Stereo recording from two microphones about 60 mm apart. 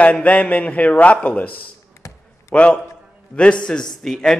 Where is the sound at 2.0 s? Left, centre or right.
Left.